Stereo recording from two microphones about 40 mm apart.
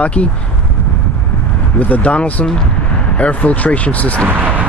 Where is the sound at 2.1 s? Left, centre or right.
Left.